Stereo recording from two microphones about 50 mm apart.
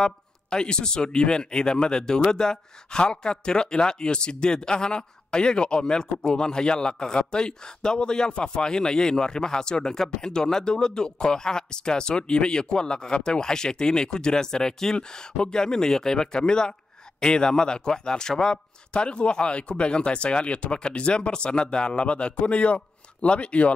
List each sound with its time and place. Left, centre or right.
0.0 s speech: centre